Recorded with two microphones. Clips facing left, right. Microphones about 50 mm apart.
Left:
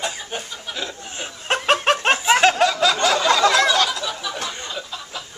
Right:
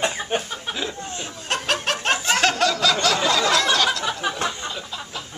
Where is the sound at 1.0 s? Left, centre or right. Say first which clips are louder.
Left 2 dB; left.